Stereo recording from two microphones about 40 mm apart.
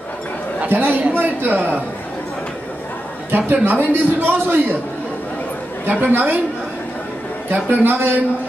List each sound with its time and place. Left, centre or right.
0.7 s a woman's voice: right
3.3 s a woman's voice: right
5.9 s speech: right
7.8 s a man's voice: right